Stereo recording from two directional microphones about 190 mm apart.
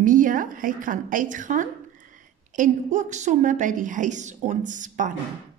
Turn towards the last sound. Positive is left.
turn(degrees=-45)  # may be behind; listen again after turning